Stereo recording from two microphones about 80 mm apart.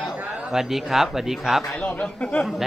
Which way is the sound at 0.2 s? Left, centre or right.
Centre.